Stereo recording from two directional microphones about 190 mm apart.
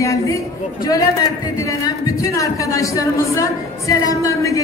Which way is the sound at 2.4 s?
15° left (ahead or behind).